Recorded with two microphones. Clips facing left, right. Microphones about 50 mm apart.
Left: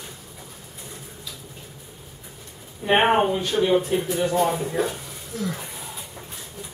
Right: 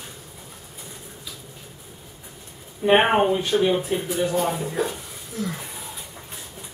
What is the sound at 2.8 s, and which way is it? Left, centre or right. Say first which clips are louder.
Speech: right 1 dB; centre.